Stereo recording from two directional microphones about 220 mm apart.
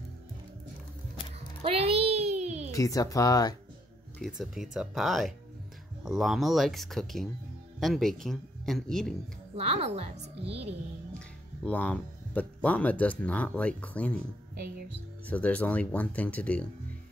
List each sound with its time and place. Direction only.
1.6 s a sound: 25° right (ahead or behind)
2.7 s speech: 15° left (ahead or behind)
4.2 s speech: centre (ahead or behind)
9.6 s speech: 30° right (ahead or behind)
11.1 s speech: 5° left (ahead or behind)
15.2 s speech: 5° left (ahead or behind)